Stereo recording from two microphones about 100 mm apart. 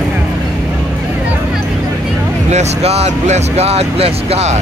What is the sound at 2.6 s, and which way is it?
Speech, 90° right.